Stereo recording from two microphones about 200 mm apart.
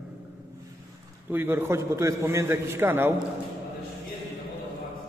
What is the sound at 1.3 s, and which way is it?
A man's voice, 10° right (ahead or behind).